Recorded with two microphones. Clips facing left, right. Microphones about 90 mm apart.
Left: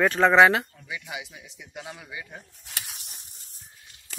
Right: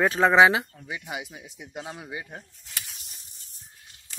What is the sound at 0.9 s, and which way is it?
Speech, 40° right (ahead or behind).